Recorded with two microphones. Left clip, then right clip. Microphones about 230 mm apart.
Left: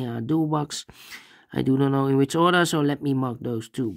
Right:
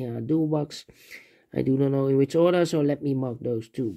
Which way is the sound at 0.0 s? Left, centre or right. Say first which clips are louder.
Left 1 dB; left.